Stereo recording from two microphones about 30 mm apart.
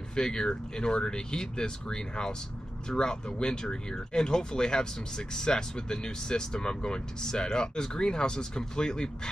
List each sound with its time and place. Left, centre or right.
0.1 s speech: left